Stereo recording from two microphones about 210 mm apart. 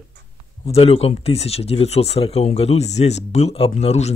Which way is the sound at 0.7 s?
30° left (ahead or behind).